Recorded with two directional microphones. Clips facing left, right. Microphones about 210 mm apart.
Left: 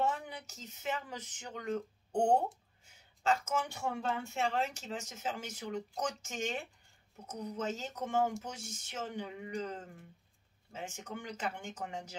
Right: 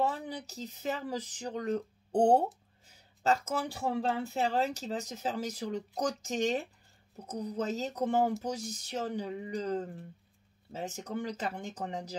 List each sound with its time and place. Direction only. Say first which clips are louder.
0.0 s speech: right 3 dB; 35° right (ahead or behind)